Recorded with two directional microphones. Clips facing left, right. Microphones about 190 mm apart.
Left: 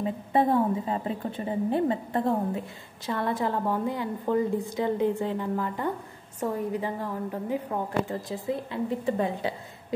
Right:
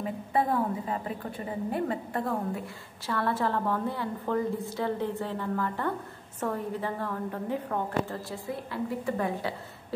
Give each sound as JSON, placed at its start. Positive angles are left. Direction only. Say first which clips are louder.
{"t": 0.0, "sound": "a woman's voice", "louder": "left 4 dB", "side_deg": 25}